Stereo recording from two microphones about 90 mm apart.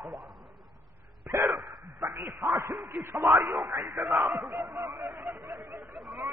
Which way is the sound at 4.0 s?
5° right (ahead or behind).